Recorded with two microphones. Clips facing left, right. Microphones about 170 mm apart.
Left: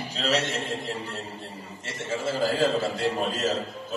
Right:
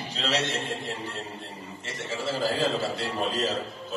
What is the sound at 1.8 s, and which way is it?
A man's voice, 45° left (ahead or behind).